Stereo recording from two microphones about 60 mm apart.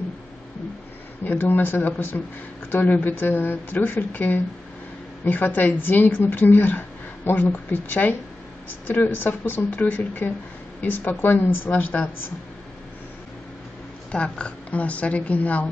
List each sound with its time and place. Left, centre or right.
1.2 s a woman's voice: left
14.1 s a woman's voice: centre